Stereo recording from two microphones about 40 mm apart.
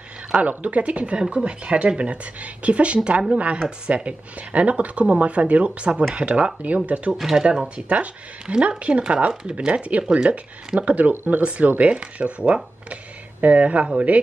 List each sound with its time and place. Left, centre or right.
0.3 s speech: right
7.1 s speech: centre
7.6 s speech: right